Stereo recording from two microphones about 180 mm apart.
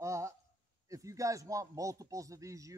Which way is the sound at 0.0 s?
15° right (ahead or behind).